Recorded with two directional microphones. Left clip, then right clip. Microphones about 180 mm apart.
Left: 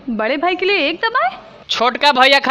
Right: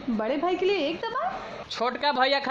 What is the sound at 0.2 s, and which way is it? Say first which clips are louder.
A woman's voice: left 9 dB; 15° left (ahead or behind).